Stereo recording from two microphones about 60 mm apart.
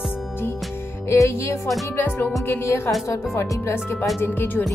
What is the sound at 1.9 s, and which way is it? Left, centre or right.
Music, left.